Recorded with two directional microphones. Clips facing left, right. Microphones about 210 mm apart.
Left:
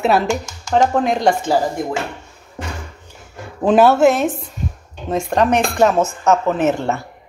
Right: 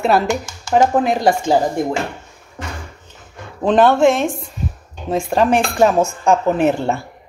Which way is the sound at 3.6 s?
5° left (ahead or behind).